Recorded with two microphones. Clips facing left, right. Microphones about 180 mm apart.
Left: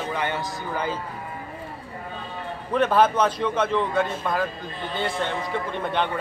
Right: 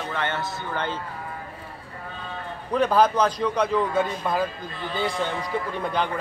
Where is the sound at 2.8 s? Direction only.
5° left (ahead or behind).